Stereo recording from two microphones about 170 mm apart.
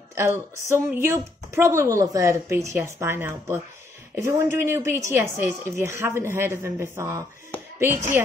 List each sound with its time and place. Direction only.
0.1 s a woman's voice: 15° right (ahead or behind)